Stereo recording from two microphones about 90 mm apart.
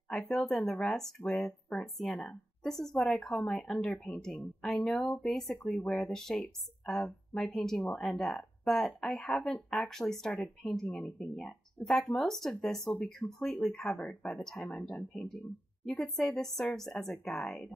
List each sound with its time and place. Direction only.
0.1 s a woman's voice: 5° left (ahead or behind)
14.7 s speech: 20° left (ahead or behind)
15.0 s speech: 5° left (ahead or behind)